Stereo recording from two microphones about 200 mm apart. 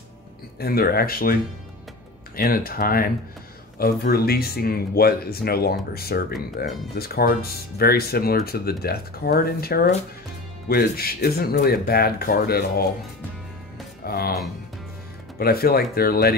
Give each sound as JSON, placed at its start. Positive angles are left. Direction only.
{"t": 0.6, "sound": "speech", "side_deg": 50}
{"t": 14.0, "sound": "speech", "side_deg": 50}
{"t": 15.3, "sound": "speech", "side_deg": 50}